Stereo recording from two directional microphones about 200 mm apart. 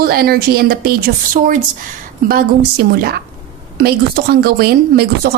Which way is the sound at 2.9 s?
50° right (ahead or behind).